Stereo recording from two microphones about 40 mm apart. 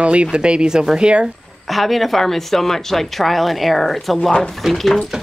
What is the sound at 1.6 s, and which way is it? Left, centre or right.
Speech, centre.